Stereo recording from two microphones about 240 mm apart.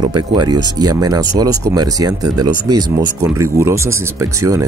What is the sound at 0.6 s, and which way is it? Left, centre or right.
Speech, centre.